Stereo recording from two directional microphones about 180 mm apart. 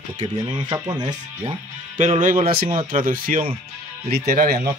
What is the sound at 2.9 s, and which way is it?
Speech, 50° right (ahead or behind).